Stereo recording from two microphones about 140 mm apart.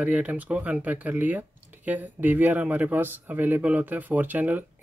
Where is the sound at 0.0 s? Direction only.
10° right (ahead or behind).